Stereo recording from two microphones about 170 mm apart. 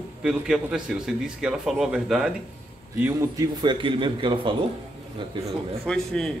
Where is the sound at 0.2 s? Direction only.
5° right (ahead or behind).